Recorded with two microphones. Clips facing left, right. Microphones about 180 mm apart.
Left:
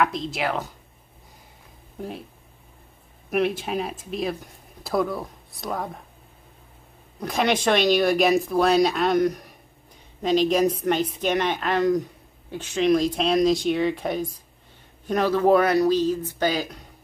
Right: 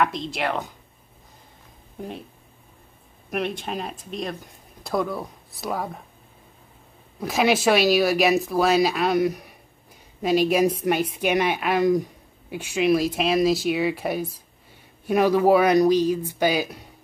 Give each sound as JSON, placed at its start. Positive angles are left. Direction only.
{"t": 0.0, "sound": "speech", "side_deg": 0}
{"t": 2.0, "sound": "speech", "side_deg": 0}
{"t": 3.3, "sound": "speech", "side_deg": 5}
{"t": 7.2, "sound": "a woman's voice", "side_deg": -5}